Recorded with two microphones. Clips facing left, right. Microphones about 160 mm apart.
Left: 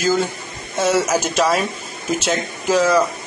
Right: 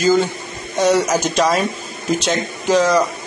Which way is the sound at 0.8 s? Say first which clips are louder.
Right 2 dB; 5° left (ahead or behind).